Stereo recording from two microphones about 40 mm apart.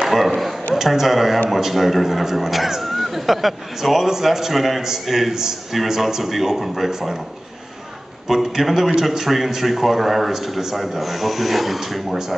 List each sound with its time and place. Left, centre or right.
0.0 s a man's voice: centre
8.3 s a man's voice: centre